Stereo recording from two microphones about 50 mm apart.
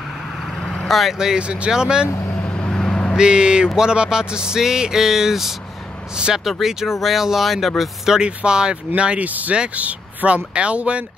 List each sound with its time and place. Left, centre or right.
0.8 s speech: centre
1.1 s speech: centre
2.5 s vehicle: centre
3.2 s speech: centre
6.1 s speech: centre
6.4 s speech: centre; by 9.3 s right
9.3 s speech: right